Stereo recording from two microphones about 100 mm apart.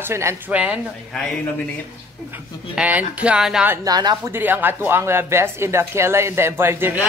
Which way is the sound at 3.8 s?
45° right (ahead or behind).